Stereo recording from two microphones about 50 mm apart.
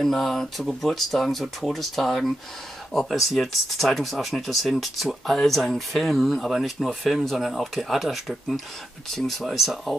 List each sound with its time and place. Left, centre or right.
0.0 s speech: centre